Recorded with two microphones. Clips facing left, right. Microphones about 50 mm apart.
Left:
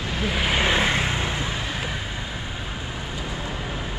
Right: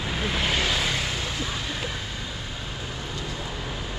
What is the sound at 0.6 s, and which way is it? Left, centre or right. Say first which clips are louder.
Vehicle: left 5 dB; left.